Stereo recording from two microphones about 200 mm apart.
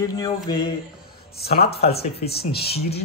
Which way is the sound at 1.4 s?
50° left (ahead or behind).